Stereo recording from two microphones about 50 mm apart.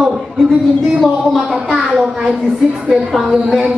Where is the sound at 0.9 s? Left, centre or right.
Centre.